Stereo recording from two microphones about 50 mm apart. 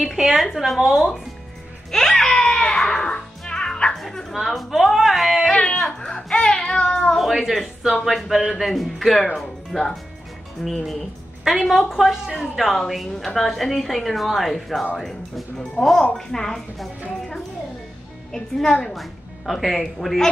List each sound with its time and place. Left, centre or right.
0.0 s a woman's voice: centre
1.9 s music: centre
3.9 s a woman's voice: centre
5.5 s speech: left
7.2 s a woman's voice: centre
18.3 s speech: centre